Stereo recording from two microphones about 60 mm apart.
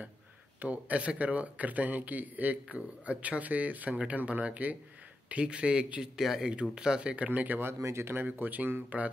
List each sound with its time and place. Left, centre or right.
0.6 s speech: right
7.2 s speech: right
7.8 s speech: right
8.1 s speech: right